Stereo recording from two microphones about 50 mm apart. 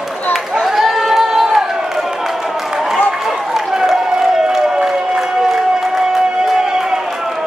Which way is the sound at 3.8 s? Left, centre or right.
Centre.